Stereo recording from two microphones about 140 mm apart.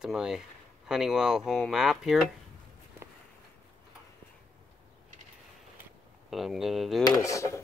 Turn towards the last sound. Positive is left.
turn(degrees=20)  # may be behind; listen again after turning